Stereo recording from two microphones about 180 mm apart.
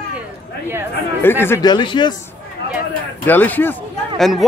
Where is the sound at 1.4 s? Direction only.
20° left (ahead or behind).